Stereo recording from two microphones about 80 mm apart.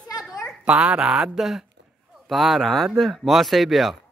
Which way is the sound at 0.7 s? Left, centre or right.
Centre.